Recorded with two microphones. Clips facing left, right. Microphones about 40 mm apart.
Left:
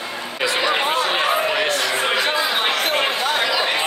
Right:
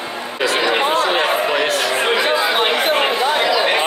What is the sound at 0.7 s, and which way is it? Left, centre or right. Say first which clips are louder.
Speech: right 3 dB; centre.